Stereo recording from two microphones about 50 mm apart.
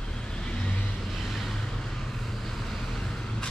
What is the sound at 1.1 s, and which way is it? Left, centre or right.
Vehicle, centre.